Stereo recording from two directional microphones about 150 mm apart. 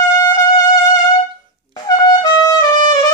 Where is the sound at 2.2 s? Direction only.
25° left (ahead or behind).